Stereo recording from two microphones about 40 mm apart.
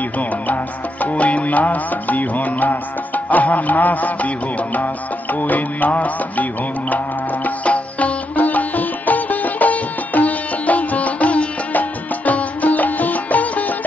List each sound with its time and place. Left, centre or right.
1.0 s music: left
5.3 s music: left
7.4 s sitar: left
12.3 s music: left